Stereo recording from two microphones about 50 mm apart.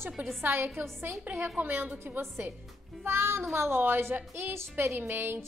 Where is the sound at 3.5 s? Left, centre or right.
Right.